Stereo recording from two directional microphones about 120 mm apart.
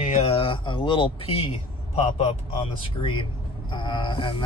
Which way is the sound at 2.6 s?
50° left (ahead or behind).